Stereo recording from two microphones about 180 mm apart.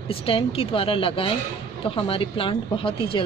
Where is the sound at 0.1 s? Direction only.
30° left (ahead or behind).